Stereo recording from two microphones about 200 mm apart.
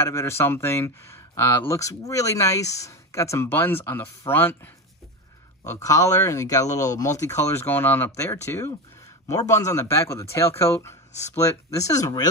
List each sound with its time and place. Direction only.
0.0 s speech: 15° left (ahead or behind)
5.9 s speech: 15° left (ahead or behind)